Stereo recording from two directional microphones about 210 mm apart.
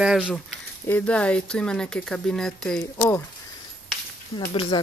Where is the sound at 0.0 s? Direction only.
5° right (ahead or behind).